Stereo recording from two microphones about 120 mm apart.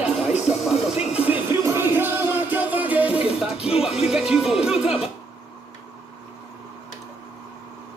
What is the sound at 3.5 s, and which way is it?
Music, 55° left (ahead or behind).